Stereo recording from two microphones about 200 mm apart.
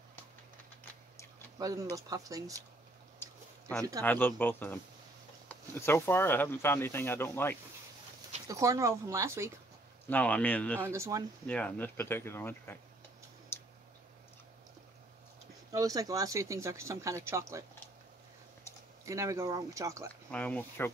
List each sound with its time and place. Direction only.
1.6 s speech: 15° right (ahead or behind)
3.2 s a sound: 5° left (ahead or behind)
4.0 s speech: 10° left (ahead or behind)
8.5 s speech: 15° right (ahead or behind)
10.0 s speech: 5° left (ahead or behind)
10.8 s speech: 15° right (ahead or behind)
11.4 s speech: 5° left (ahead or behind)
13.5 s a sound: 10° left (ahead or behind)
15.7 s speech: 15° right (ahead or behind)
19.0 s speech: 15° right (ahead or behind)
20.2 s speech: 5° left (ahead or behind)